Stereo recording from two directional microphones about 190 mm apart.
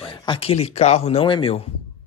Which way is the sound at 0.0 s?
25° left (ahead or behind).